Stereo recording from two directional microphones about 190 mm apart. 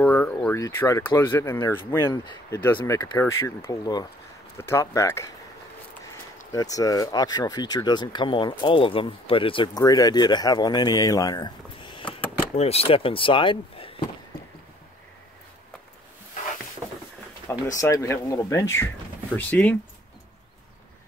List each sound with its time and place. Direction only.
0.0 s speech: 10° left (ahead or behind)
6.5 s speech: 20° left (ahead or behind)
17.7 s speech: 15° left (ahead or behind)